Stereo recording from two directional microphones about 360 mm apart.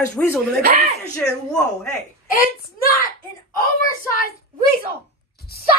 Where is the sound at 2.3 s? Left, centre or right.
Left.